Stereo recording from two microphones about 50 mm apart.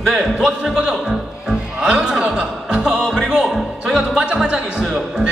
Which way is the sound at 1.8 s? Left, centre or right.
Centre.